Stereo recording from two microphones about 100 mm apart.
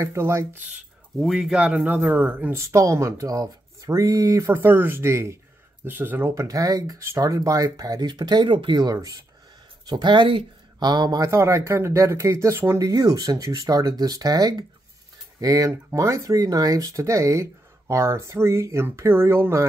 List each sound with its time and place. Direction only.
0.0 s speech: 30° right (ahead or behind)
1.2 s speech: 5° right (ahead or behind)
2.5 s speech: 30° right (ahead or behind)
4.6 s speech: 20° right (ahead or behind)
6.4 s speech: 35° right (ahead or behind)
11.2 s speech: 30° right (ahead or behind)